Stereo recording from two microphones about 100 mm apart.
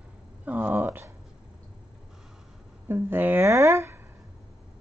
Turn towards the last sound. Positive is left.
turn(degrees=-25)  # may be behind; listen again after turning